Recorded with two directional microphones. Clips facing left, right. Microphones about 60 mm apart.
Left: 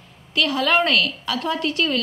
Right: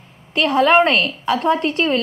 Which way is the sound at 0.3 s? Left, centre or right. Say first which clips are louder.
Right 6 dB; right.